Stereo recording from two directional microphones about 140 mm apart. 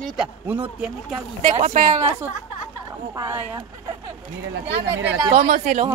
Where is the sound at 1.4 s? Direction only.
60° right (ahead or behind).